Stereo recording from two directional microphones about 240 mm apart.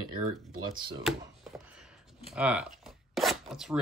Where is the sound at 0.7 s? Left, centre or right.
Centre.